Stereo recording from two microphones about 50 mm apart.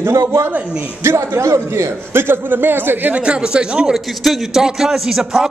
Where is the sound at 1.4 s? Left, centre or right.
Right.